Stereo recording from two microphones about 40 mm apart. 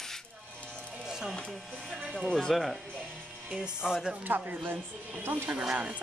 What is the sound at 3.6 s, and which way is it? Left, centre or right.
Speech, centre.